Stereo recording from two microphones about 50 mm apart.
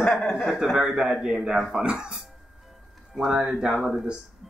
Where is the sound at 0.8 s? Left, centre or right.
Centre.